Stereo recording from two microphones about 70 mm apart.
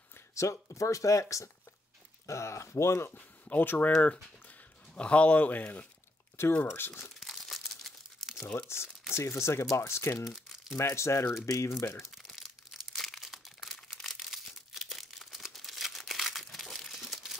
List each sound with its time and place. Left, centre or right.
0.3 s speech: left
2.2 s speech: left
3.1 s speech: left
6.4 s speech: left
7.2 s crumpling: centre
8.5 s speech: left
12.0 s crumpling: centre